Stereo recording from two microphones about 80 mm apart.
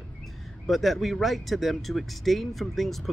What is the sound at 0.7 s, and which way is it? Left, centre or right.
Speech, centre.